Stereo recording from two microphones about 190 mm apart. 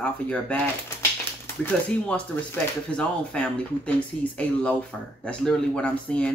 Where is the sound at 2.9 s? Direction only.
5° left (ahead or behind).